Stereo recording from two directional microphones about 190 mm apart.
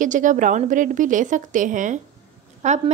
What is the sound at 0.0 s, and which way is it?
A woman's voice, 40° right (ahead or behind).